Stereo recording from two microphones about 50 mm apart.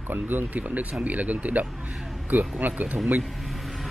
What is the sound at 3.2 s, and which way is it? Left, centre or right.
Vehicle, centre.